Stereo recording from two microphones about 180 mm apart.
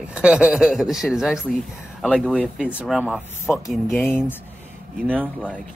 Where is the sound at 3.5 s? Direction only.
5° left (ahead or behind).